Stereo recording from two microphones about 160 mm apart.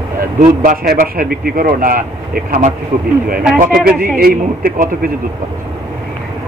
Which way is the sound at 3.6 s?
65° right (ahead or behind).